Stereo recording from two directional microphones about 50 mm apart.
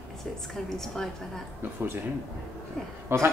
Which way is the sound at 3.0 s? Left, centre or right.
Right.